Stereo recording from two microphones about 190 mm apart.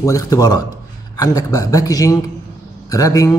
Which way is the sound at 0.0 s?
20° left (ahead or behind).